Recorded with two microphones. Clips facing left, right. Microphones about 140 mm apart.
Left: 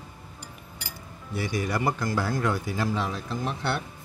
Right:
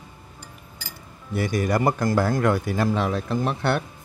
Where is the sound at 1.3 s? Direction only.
50° right (ahead or behind).